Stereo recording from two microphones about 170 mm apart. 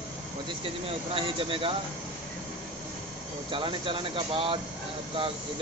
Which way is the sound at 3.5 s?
30° right (ahead or behind).